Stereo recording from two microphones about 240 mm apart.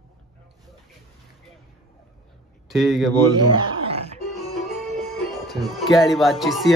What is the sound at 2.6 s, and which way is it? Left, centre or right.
Speech, centre.